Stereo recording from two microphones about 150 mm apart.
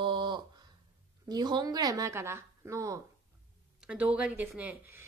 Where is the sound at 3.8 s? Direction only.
5° right (ahead or behind).